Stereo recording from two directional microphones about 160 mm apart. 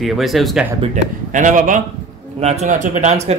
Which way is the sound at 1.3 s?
55° right (ahead or behind).